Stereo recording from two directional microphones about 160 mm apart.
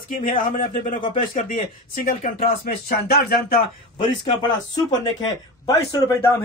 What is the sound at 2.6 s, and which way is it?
Speech, 75° left (ahead or behind).